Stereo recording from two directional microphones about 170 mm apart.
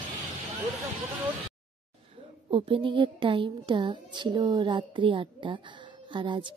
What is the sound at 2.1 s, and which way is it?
Speech, 30° right (ahead or behind).